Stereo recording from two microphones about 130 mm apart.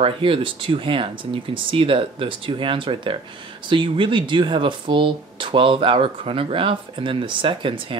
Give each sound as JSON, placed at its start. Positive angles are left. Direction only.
{"t": 0.0, "sound": "speech", "side_deg": -45}